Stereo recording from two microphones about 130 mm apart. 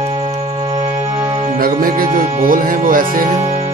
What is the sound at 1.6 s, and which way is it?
Speech, 90° right.